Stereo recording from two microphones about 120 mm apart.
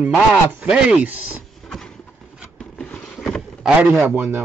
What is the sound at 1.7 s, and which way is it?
Vehicle, 5° left (ahead or behind).